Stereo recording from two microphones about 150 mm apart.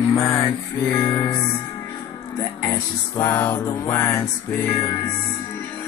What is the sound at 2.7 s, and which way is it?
Music, 15° left (ahead or behind).